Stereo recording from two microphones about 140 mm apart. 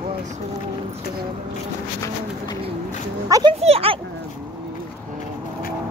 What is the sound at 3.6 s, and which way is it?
Speech, 45° right (ahead or behind).